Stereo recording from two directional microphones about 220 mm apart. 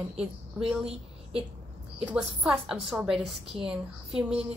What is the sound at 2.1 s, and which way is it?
A woman's voice, 5° right (ahead or behind).